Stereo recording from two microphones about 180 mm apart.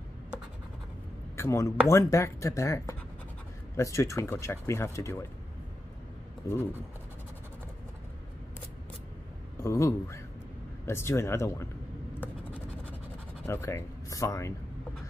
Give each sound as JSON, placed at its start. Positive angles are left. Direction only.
{"t": 1.3, "sound": "speech", "side_deg": 15}
{"t": 6.4, "sound": "speech", "side_deg": 15}
{"t": 9.6, "sound": "speech", "side_deg": 15}
{"t": 13.5, "sound": "speech", "side_deg": 15}